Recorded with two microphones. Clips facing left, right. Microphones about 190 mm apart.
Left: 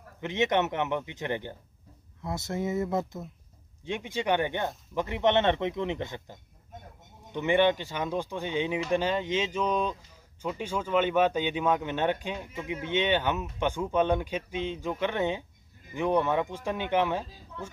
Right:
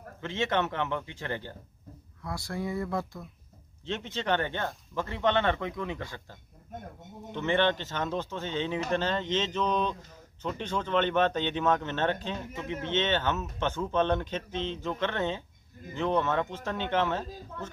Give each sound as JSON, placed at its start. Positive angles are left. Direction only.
{"t": 0.2, "sound": "speech", "side_deg": 20}